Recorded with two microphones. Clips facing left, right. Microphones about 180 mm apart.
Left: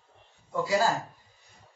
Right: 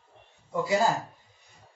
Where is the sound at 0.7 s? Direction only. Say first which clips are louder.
Right 1 dB; 20° right (ahead or behind).